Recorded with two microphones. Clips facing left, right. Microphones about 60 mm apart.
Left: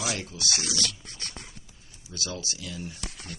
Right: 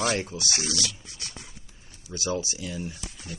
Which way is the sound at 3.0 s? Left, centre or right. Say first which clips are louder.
Even; left.